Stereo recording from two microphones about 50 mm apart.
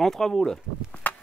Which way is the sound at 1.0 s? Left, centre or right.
Left.